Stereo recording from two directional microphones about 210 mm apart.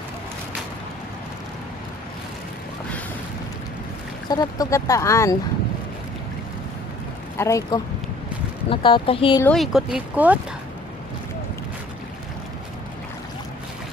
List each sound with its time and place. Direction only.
4.3 s speech: 20° left (ahead or behind)
7.3 s speech: 15° left (ahead or behind)
9.4 s speech: centre (ahead or behind)